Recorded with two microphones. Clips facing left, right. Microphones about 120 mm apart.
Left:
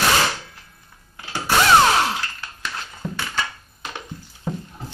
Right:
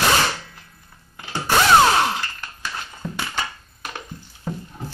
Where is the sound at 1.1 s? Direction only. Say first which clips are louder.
Right 1 dB; 15° right (ahead or behind).